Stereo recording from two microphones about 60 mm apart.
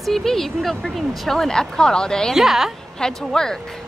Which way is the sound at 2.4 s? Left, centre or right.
Centre.